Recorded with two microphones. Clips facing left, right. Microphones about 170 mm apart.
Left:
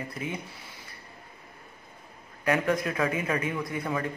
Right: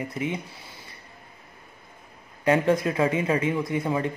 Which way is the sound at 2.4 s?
25° right (ahead or behind).